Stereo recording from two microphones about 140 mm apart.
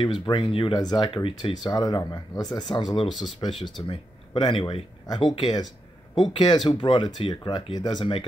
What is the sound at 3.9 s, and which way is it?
Speech, 35° left (ahead or behind).